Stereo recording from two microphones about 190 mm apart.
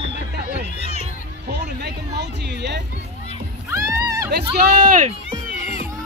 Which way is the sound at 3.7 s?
15° right (ahead or behind).